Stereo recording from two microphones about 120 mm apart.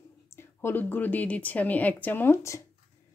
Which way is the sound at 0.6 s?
20° left (ahead or behind).